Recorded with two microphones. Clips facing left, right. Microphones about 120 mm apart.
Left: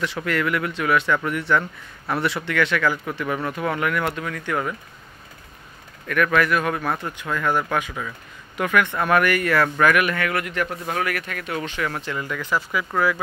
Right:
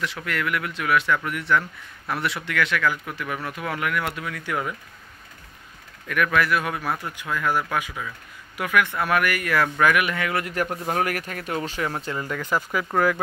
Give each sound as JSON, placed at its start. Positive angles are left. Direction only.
{"t": 0.0, "sound": "a man's voice", "side_deg": 0}
{"t": 6.0, "sound": "speech", "side_deg": -10}
{"t": 10.4, "sound": "a man's voice", "side_deg": -40}